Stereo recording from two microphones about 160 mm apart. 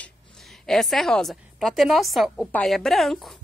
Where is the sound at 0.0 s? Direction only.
Centre (ahead or behind).